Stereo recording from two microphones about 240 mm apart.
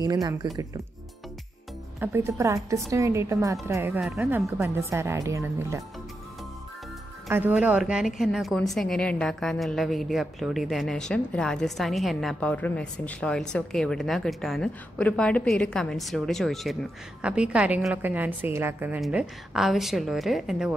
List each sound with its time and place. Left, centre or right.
0.0 s speech: centre
2.0 s speech: centre
7.2 s a woman's voice: centre